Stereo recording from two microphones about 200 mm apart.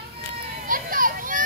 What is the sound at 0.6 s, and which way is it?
Children playing, 45° right (ahead or behind).